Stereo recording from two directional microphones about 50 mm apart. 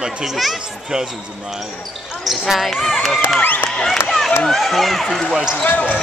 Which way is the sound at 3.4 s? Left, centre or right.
Left.